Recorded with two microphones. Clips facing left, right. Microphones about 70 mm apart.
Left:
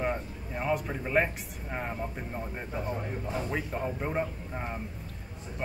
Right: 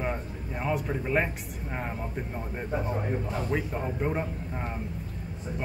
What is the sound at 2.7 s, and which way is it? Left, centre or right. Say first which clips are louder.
Speech: right 5 dB; centre.